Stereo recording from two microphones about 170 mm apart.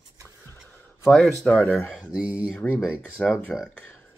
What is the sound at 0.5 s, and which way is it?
Speech, centre (ahead or behind).